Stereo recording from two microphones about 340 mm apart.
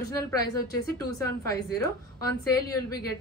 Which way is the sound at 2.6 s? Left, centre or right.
Left.